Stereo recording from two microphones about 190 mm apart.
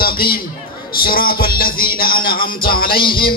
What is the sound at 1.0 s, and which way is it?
Music, 50° left (ahead or behind).